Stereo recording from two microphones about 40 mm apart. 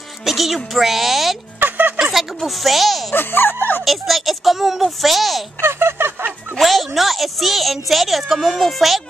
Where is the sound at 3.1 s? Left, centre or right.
Left.